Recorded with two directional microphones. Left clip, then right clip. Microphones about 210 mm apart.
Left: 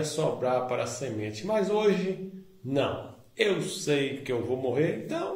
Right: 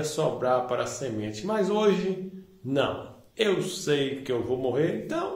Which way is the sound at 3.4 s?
15° right (ahead or behind).